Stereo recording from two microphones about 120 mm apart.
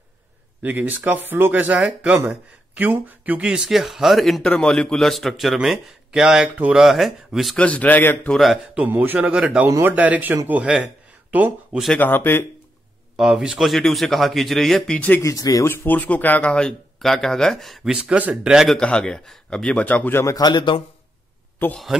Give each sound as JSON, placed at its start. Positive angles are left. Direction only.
{"t": 0.6, "sound": "speech", "side_deg": -15}
{"t": 7.5, "sound": "a man's voice", "side_deg": 10}
{"t": 8.3, "sound": "speech", "side_deg": 0}
{"t": 8.7, "sound": "speech", "side_deg": -15}
{"t": 10.6, "sound": "a man's voice", "side_deg": -10}
{"t": 12.0, "sound": "a man's voice", "side_deg": 15}
{"t": 13.1, "sound": "speech", "side_deg": -5}
{"t": 15.2, "sound": "speech", "side_deg": 30}
{"t": 15.7, "sound": "speech", "side_deg": 15}
{"t": 18.8, "sound": "a man's voice", "side_deg": 5}
{"t": 20.3, "sound": "a man's voice", "side_deg": 35}
{"t": 21.6, "sound": "a man's voice", "side_deg": 15}